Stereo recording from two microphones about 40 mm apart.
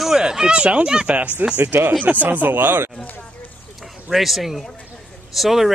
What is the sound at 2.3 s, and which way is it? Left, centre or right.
Speech, right.